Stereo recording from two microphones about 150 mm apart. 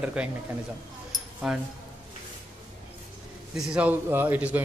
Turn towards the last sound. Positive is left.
turn(degrees=-10)  # may be behind; listen again after turning